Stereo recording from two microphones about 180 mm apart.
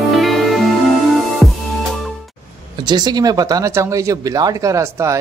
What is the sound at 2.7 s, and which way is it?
Speech, 25° right (ahead or behind).